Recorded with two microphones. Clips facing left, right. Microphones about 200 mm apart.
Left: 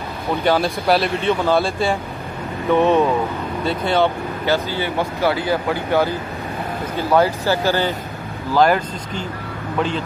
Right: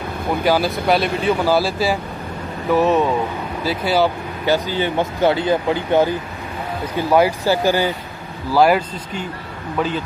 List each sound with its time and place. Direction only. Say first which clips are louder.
0.4 s speech: even; 5° right (ahead or behind)